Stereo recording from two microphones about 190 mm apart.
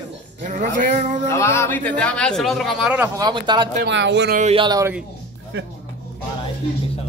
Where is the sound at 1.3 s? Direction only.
15° left (ahead or behind); by 3.1 s 5° right (ahead or behind).